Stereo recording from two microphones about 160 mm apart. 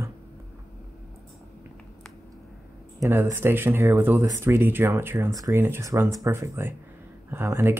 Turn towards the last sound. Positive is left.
turn(degrees=-15)  # may be behind; listen again after turning